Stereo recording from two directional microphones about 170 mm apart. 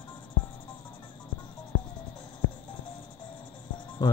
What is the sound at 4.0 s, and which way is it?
Cricket, 25° left (ahead or behind).